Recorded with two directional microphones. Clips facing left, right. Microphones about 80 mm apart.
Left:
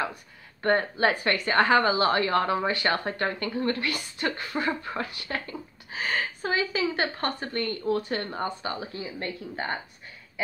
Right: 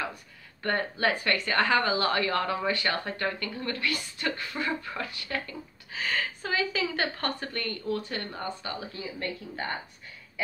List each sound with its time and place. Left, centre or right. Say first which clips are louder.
0.6 s speech: left 5 dB; left
7.8 s speech: left 5 dB; left